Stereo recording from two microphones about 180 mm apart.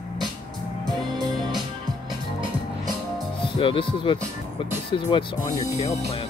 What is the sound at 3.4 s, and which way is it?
Speech, 30° left (ahead or behind).